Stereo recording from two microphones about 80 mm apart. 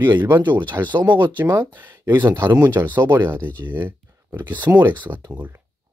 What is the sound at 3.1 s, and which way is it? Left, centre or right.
Speech, right.